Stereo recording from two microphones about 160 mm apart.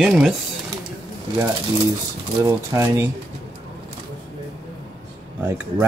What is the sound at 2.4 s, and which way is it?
Speech, 20° right (ahead or behind).